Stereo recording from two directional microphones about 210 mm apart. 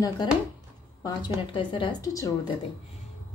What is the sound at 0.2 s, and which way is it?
A woman's voice, 20° left (ahead or behind).